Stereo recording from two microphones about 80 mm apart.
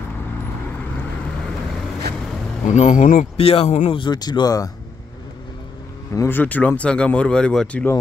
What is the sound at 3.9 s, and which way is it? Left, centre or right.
Speech, left.